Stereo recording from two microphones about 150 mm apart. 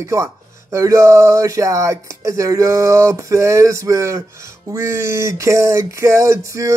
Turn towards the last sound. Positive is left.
turn(degrees=-20)  # may be behind; listen again after turning